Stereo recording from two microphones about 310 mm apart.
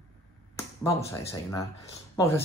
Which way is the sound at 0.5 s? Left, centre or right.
Centre.